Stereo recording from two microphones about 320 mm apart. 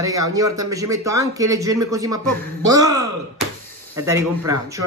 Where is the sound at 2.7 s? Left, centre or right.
Centre.